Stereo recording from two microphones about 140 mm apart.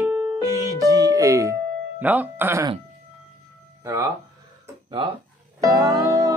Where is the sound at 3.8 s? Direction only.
20° right (ahead or behind).